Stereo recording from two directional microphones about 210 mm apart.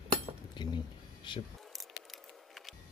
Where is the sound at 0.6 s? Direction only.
20° left (ahead or behind).